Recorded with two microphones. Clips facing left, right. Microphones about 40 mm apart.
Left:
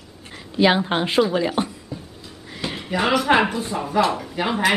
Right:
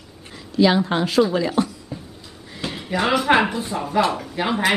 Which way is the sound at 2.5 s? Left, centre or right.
Centre.